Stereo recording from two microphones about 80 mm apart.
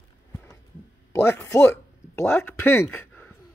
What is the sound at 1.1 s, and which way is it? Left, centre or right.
Speech, left.